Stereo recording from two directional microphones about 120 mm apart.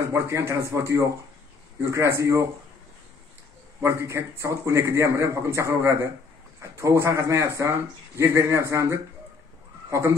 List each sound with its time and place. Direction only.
0.0 s a man's voice: 25° right (ahead or behind)
3.8 s a man's voice: 20° right (ahead or behind)